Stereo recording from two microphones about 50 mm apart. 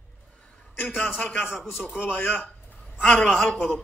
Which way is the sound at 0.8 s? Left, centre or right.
Left.